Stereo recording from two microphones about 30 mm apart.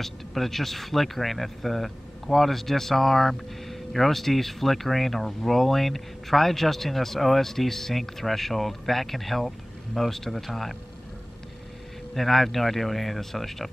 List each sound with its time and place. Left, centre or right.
0.0 s speech: centre
12.1 s speech: centre